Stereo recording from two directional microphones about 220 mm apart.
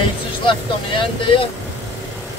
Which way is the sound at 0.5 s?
25° left (ahead or behind).